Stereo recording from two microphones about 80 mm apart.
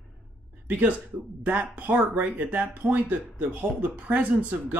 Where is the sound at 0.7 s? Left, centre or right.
Centre.